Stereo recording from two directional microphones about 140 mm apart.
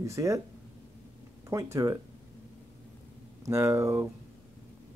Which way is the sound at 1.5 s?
20° right (ahead or behind).